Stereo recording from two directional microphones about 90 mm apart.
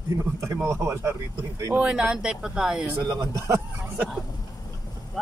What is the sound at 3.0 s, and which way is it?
Speech, 40° right (ahead or behind).